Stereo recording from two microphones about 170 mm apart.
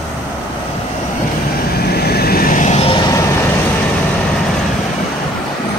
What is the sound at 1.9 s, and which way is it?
Vehicle, 70° left (ahead or behind).